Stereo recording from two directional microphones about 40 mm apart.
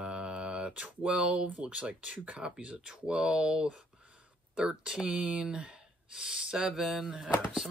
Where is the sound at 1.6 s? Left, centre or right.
Right.